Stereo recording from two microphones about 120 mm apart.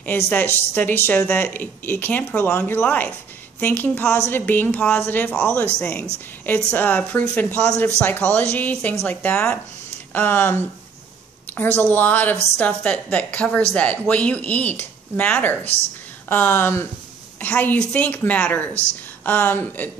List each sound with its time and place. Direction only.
0.0 s a woman's voice: 15° left (ahead or behind)